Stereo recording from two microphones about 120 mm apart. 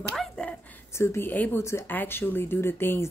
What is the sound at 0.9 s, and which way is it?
Speech, 20° left (ahead or behind).